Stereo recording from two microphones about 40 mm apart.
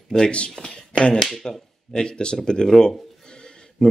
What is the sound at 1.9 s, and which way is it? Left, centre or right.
Speech, left.